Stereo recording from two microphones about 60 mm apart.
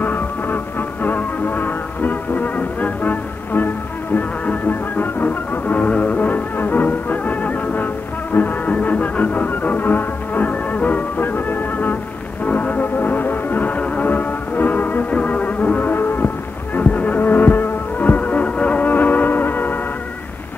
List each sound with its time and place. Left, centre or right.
0.0 s music: left